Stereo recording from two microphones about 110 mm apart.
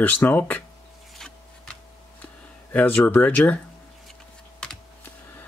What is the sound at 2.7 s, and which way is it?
Speech, 15° left (ahead or behind).